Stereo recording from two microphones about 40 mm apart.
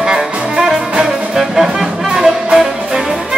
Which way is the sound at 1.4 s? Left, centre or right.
Centre.